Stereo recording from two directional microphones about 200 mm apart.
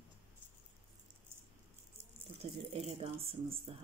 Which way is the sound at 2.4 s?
30° right (ahead or behind).